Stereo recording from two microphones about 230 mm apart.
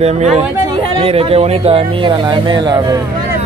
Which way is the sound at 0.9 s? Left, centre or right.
Right.